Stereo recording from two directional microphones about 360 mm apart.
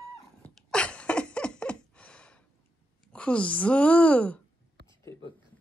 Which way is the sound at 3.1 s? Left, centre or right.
Centre.